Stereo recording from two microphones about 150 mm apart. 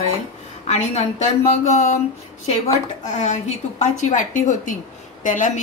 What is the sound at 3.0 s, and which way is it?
A woman's voice, 50° left (ahead or behind).